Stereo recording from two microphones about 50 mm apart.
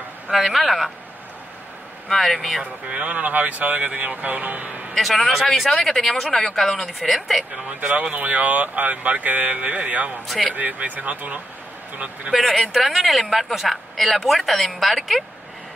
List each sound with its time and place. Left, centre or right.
0.3 s speech: centre
2.0 s speech: centre
2.6 s speech: right
4.9 s speech: centre
5.3 s speech: centre
5.7 s speech: centre
7.8 s speech: right
12.4 s speech: centre